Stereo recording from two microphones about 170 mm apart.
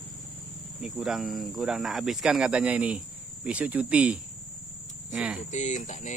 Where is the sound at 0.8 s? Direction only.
Centre (ahead or behind).